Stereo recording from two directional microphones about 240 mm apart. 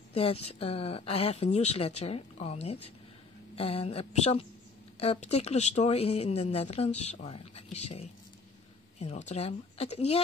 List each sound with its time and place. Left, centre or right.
0.1 s speech: left